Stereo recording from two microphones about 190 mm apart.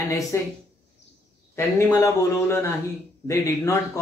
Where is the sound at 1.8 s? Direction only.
15° left (ahead or behind).